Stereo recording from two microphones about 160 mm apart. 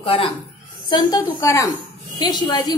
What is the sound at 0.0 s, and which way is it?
A woman's voice, 35° left (ahead or behind).